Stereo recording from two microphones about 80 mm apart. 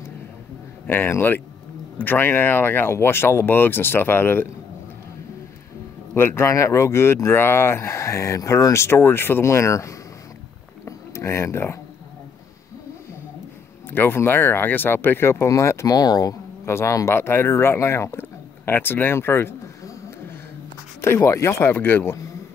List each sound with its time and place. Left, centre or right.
0.8 s speech: left
6.1 s speech: left
10.9 s a sound: left
13.8 s speech: left
16.0 s speech: left
16.6 s speech: left
21.0 s speech: left
21.7 s speech: left